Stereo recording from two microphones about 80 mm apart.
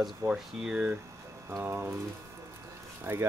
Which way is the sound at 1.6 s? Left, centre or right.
Right.